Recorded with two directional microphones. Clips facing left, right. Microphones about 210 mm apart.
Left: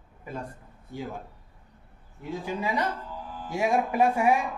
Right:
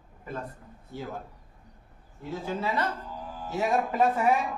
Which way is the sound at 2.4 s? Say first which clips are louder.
Left 1 dB; 15° left (ahead or behind).